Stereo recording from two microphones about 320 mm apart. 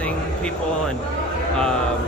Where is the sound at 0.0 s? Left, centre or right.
Centre.